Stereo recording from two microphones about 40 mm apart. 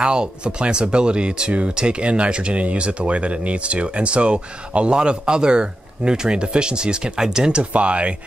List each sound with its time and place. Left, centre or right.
0.0 s speech: right
7.7 s speech: right